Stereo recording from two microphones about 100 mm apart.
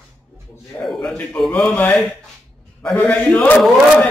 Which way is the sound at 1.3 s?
5° left (ahead or behind).